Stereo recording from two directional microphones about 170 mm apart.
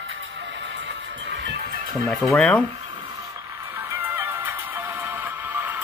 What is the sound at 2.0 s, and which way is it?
Speech, centre (ahead or behind).